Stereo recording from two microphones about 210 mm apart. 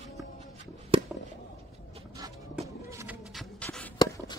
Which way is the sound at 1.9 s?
20° right (ahead or behind).